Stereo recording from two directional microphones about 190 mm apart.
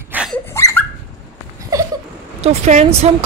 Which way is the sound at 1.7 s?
15° right (ahead or behind).